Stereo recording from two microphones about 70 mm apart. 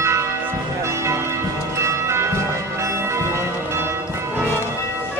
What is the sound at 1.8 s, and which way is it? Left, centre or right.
Bell, right.